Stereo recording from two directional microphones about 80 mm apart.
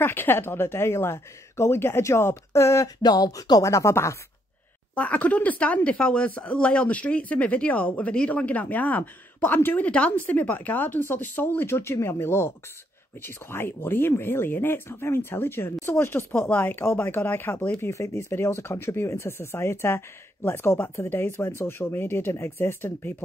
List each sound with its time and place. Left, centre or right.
0.0 s speech: left
3.0 s speech: left
3.6 s speech: left
4.9 s speech: centre
17.7 s speech: left